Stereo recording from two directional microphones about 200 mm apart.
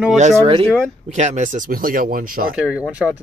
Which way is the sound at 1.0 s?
35° right (ahead or behind).